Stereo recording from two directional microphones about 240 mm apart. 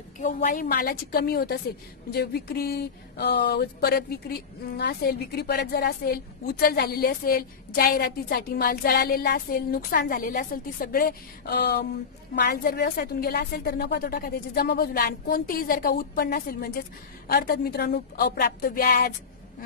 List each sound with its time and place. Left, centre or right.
0.2 s speech: left